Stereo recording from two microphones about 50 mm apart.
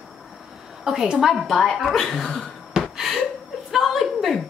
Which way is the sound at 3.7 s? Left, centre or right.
Centre.